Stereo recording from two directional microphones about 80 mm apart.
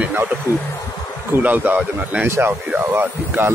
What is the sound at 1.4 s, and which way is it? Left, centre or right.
Speech, right.